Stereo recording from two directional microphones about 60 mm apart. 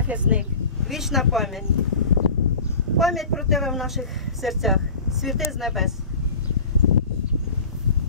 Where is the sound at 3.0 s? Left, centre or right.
Centre.